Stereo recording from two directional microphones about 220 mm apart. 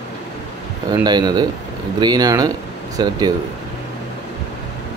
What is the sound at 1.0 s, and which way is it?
Speech, 20° right (ahead or behind).